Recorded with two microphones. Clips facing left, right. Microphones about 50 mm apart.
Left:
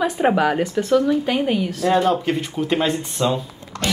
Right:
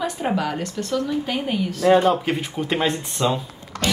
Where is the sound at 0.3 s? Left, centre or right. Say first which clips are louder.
Left 6 dB; centre.